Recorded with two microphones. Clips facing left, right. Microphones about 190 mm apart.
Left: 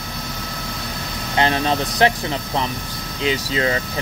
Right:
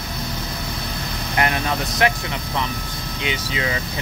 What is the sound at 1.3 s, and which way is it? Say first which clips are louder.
Speech: left 3 dB; 30° left (ahead or behind).